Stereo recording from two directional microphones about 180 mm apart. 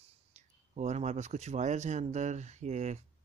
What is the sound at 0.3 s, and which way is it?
Speech, 40° right (ahead or behind).